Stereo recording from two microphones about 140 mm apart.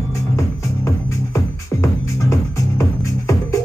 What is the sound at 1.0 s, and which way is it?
Music, 20° left (ahead or behind).